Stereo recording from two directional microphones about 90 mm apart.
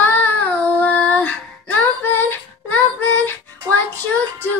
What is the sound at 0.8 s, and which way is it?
Female singing, 15° left (ahead or behind).